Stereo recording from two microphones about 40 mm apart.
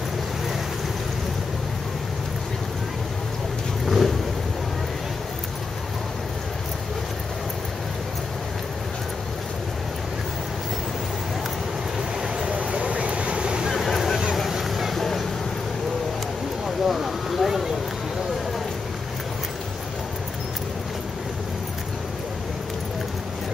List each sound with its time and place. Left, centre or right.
3.8 s vehicle: centre
12.5 s vehicle: right
13.7 s vehicle: centre
15.0 s a sound: centre
16.6 s vehicle: centre